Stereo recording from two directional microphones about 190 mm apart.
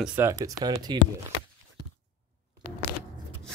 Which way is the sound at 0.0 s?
10° right (ahead or behind).